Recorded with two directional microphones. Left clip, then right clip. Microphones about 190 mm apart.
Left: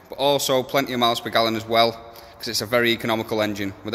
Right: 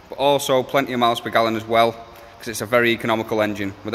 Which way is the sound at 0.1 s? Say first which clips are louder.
Right 2 dB; 5° left (ahead or behind).